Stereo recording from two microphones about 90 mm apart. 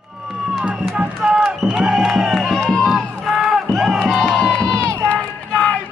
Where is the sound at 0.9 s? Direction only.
10° right (ahead or behind); by 5.2 s 10° left (ahead or behind).